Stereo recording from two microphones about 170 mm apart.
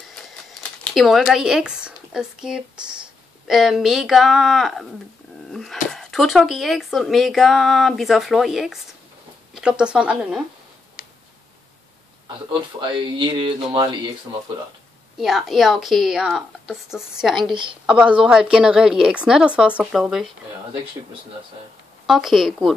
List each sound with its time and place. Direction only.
0.9 s a woman's voice: centre (ahead or behind)
11.0 s tick-tock: 60° left (ahead or behind)
12.8 s speech: 30° right (ahead or behind)
15.1 s a woman's voice: centre (ahead or behind)
22.0 s a woman's voice: centre (ahead or behind)